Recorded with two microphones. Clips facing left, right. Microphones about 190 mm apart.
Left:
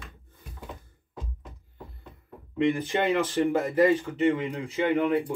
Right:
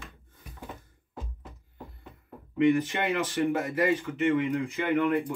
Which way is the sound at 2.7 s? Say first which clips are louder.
Left 3 dB; 30° left (ahead or behind).